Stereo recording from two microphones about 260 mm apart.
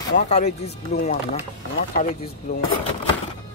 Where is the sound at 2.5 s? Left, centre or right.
Left.